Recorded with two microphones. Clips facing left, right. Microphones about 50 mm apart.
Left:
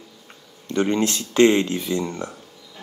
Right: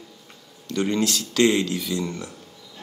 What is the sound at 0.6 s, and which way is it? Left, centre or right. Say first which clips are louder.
Speech: left 2 dB; left.